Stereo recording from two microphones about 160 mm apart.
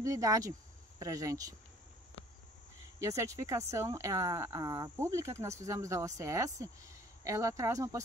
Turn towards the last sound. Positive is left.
turn(degrees=-20)  # may be behind; listen again after turning